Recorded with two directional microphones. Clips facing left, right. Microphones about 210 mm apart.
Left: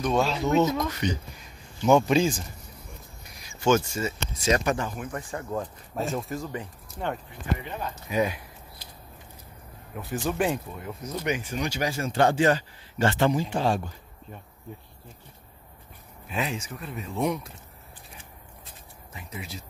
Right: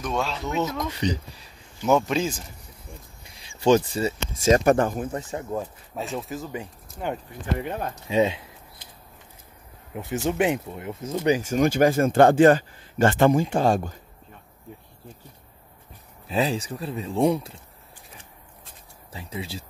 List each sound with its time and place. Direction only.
0.0 s speech: centre (ahead or behind)
0.9 s speech: 35° right (ahead or behind)
1.8 s speech: 5° right (ahead or behind)
3.3 s speech: 30° right (ahead or behind); by 5.0 s 50° right (ahead or behind)
5.0 s speech: 25° right (ahead or behind)
5.6 s speech: centre (ahead or behind)
7.6 s speech: 55° right (ahead or behind)
8.1 s speech: 25° right (ahead or behind)
9.9 s speech: 20° right (ahead or behind); by 13.9 s 45° right (ahead or behind)
16.3 s speech: 30° right (ahead or behind)
19.1 s speech: 30° right (ahead or behind)